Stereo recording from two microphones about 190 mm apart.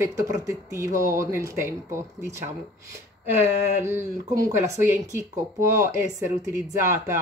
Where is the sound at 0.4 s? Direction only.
15° right (ahead or behind).